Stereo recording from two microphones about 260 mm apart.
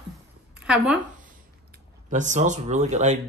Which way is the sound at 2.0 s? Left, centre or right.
Right.